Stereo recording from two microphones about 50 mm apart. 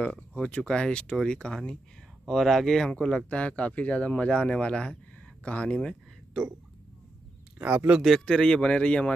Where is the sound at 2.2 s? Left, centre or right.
Centre.